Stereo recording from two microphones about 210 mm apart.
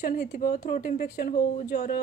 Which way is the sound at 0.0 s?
45° left (ahead or behind).